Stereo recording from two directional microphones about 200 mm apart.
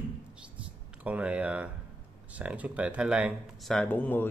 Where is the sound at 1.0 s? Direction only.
5° right (ahead or behind); by 4.3 s 10° left (ahead or behind).